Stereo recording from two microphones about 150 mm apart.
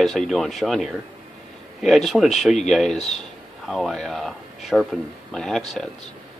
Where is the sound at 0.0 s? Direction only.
Centre (ahead or behind).